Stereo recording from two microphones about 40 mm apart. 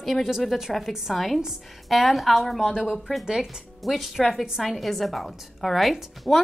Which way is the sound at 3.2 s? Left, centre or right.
Centre.